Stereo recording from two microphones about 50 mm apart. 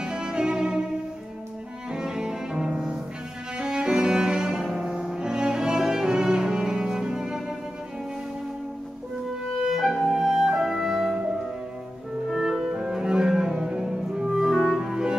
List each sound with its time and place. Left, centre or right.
0.0 s music: centre
1.9 s cello: centre
9.6 s music: centre
12.3 s cello: centre